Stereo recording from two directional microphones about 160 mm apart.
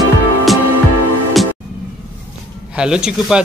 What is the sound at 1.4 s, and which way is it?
Music, centre (ahead or behind).